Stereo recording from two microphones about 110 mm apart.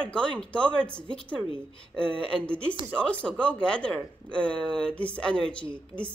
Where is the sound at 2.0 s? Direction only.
55° right (ahead or behind).